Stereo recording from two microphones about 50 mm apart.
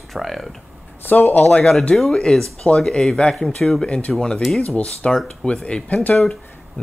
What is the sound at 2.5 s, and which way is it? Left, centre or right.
Speech, left.